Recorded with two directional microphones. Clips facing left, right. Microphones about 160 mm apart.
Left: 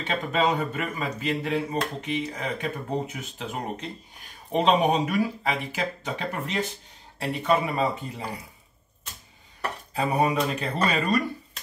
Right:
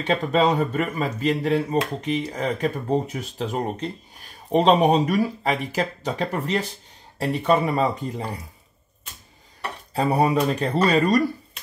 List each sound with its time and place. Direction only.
0.0 s speech: 35° right (ahead or behind)
9.9 s speech: 35° right (ahead or behind)